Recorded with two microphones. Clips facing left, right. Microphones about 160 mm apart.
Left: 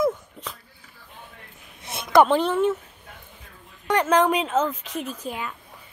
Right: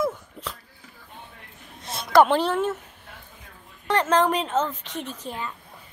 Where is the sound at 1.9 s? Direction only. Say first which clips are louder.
Even; 20° left (ahead or behind).